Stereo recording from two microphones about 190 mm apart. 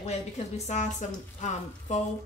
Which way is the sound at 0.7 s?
40° left (ahead or behind).